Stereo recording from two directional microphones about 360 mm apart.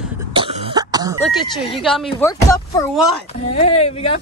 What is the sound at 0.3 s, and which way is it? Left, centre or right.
Throat clearing, centre.